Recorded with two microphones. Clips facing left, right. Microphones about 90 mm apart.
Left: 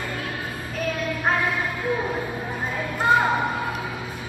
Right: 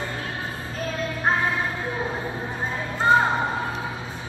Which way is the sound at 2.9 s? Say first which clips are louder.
Right 1 dB; 30° right (ahead or behind).